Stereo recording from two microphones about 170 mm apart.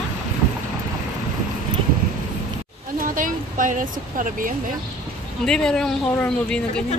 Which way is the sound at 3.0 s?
50° right (ahead or behind).